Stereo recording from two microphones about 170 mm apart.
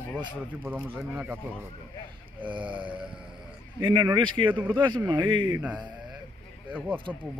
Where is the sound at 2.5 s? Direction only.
30° right (ahead or behind).